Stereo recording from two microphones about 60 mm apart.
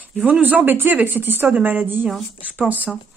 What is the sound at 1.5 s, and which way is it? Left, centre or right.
Speech, right.